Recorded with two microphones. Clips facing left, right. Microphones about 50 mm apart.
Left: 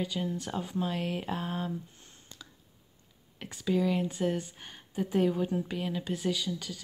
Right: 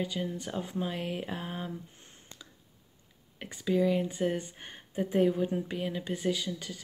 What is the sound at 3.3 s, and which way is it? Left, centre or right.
Speech, centre.